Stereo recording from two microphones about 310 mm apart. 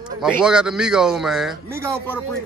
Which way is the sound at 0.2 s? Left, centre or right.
Centre.